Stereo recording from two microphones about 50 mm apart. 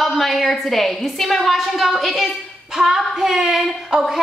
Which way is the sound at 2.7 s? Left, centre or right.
Centre.